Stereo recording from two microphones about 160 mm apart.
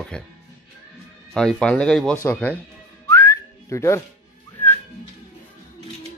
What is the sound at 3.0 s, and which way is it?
Whistling, 15° left (ahead or behind).